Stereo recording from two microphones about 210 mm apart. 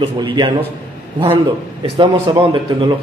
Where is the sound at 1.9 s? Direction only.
20° right (ahead or behind).